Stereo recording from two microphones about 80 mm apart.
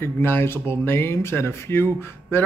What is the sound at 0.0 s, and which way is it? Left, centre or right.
Speech, left.